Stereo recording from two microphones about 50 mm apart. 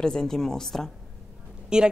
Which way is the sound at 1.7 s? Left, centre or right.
Centre.